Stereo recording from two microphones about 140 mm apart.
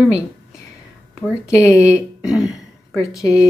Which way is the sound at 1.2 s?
20° left (ahead or behind).